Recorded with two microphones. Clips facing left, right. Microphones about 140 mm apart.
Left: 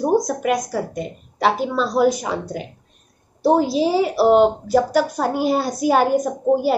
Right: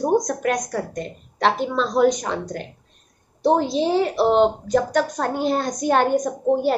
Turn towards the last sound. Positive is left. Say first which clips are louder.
# left 2 dB
turn(degrees=5)  # may be behind; listen again after turning